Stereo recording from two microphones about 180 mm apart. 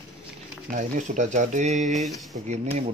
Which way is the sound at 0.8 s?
45° right (ahead or behind).